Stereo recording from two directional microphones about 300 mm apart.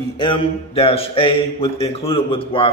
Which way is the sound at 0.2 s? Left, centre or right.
Centre.